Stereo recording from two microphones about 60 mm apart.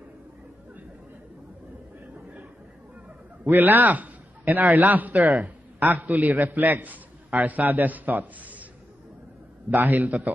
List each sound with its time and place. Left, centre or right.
3.4 s a man's voice: right
9.7 s a man's voice: right